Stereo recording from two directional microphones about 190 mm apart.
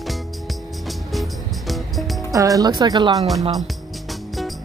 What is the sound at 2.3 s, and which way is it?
Speech, 20° right (ahead or behind).